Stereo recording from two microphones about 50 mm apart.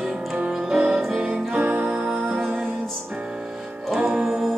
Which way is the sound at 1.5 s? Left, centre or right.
Right.